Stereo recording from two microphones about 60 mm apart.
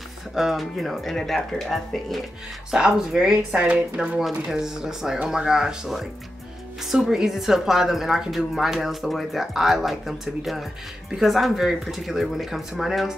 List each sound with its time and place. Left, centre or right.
0.3 s a woman's voice: centre
2.7 s speech: centre
3.5 s a woman's voice: right
4.5 s a woman's voice: centre